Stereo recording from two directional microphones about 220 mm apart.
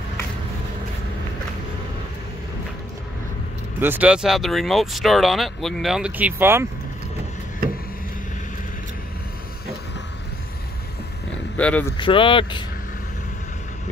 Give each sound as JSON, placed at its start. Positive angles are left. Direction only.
{"t": 3.8, "sound": "speech", "side_deg": -10}
{"t": 11.5, "sound": "vehicle", "side_deg": 5}
{"t": 12.0, "sound": "speech", "side_deg": 25}